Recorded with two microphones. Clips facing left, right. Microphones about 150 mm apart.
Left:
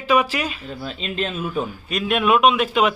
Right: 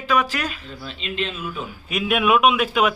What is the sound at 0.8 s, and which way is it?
Speech, 45° left (ahead or behind).